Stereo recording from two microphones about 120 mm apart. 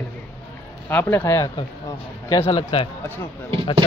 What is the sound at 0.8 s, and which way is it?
Speech, 15° left (ahead or behind).